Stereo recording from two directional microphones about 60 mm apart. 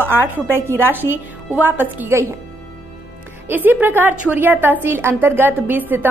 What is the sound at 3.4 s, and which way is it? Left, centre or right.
A woman's voice, right.